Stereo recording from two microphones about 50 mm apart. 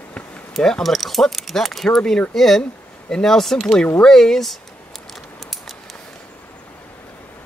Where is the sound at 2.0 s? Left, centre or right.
Centre.